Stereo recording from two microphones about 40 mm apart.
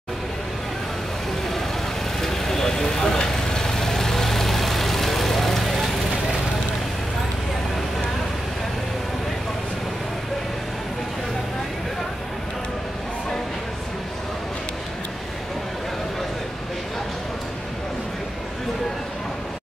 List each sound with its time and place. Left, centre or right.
2.2 s vehicle: centre